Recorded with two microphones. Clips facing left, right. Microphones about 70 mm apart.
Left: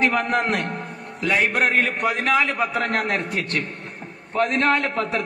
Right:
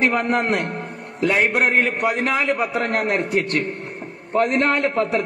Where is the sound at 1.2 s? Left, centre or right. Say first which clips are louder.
Right 2 dB; right.